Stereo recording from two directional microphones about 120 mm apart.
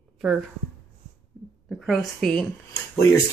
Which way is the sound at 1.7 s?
Centre (ahead or behind).